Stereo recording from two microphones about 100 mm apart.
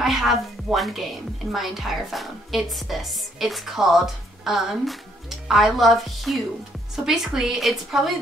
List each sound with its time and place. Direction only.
0.0 s speech: 5° right (ahead or behind)